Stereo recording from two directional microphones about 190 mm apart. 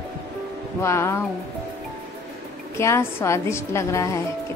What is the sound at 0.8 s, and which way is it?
Speech, 15° left (ahead or behind).